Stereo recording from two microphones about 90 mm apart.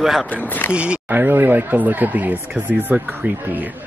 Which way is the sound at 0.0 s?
5° right (ahead or behind).